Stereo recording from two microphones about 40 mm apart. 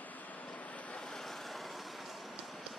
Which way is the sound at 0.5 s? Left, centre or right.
Left.